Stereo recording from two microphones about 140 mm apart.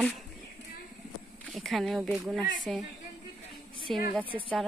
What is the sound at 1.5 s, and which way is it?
Speech, centre (ahead or behind).